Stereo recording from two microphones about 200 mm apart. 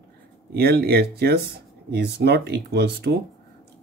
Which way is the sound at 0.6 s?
50° right (ahead or behind).